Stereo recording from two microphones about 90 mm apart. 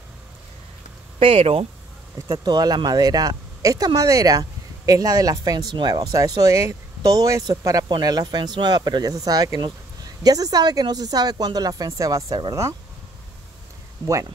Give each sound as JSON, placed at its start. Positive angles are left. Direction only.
{"t": 1.2, "sound": "speech", "side_deg": -90}
{"t": 2.4, "sound": "speech", "side_deg": -50}
{"t": 14.0, "sound": "speech", "side_deg": 35}